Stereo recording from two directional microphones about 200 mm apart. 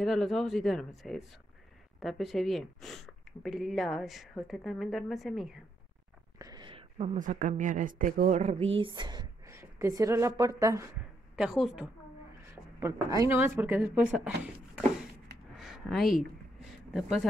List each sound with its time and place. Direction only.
0.0 s speech: centre (ahead or behind)
6.3 s speech: 20° right (ahead or behind); by 8.6 s 35° right (ahead or behind)
8.7 s a woman's voice: 25° right (ahead or behind)
11.3 s speech: 5° right (ahead or behind)
12.8 s speech: 15° right (ahead or behind)
15.5 s a sound: centre (ahead or behind)